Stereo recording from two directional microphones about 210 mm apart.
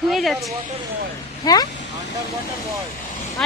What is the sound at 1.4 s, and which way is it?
Speech, 20° left (ahead or behind).